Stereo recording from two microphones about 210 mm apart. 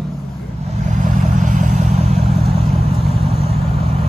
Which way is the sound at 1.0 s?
35° right (ahead or behind).